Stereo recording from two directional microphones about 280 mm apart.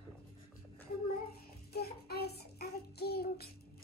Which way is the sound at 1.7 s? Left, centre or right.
Left.